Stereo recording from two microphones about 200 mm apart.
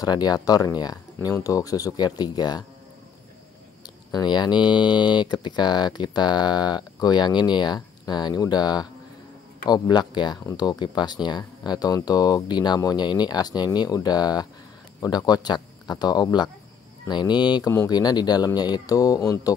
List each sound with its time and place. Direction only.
0.0 s speech: 20° left (ahead or behind)
3.8 s speech: 20° left (ahead or behind)